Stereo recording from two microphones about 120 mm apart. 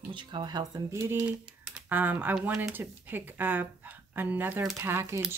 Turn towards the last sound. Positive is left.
turn(degrees=-20)  # may be behind; listen again after turning